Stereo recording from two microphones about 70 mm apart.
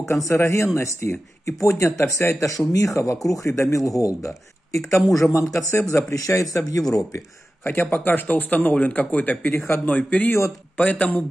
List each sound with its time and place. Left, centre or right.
0.1 s speech: left
6.8 s speech: centre
7.9 s speech: left